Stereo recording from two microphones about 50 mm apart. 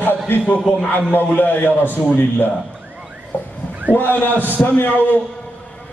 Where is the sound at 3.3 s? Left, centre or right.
Left.